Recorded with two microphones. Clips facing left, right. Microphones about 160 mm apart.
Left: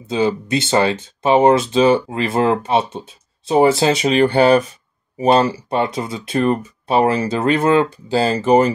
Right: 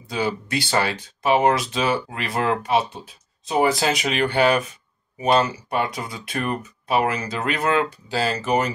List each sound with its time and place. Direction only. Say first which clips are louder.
0.1 s speech: left 7 dB; 20° left (ahead or behind)